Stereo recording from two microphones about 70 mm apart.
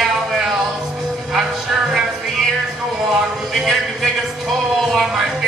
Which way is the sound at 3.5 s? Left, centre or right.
Centre.